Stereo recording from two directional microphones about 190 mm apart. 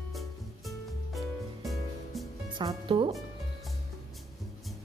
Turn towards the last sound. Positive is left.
turn(degrees=-25)  # may be behind; listen again after turning